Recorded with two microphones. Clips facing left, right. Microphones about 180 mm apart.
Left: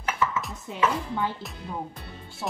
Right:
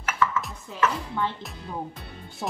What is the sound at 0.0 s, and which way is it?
Chopping, 20° left (ahead or behind).